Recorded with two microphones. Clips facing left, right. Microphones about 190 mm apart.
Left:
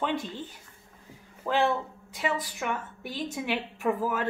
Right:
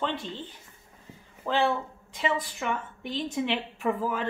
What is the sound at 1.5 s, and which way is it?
A woman's voice, 10° left (ahead or behind).